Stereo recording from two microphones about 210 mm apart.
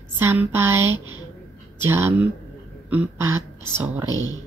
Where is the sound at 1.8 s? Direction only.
10° right (ahead or behind).